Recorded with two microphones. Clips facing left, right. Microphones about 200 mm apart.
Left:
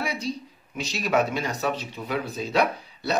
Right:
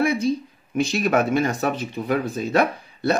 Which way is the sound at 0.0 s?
50° right (ahead or behind).